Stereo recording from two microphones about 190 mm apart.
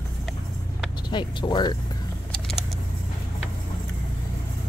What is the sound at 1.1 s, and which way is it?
Speech, 25° left (ahead or behind).